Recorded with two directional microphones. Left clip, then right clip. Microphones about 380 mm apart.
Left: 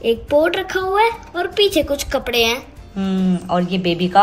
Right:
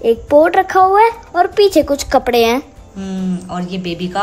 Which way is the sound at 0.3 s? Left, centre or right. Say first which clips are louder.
Right 7 dB; centre.